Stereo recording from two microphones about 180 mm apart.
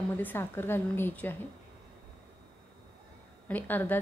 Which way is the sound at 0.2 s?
10° left (ahead or behind).